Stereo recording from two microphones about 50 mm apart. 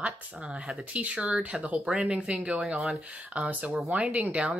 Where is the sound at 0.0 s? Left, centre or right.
Right.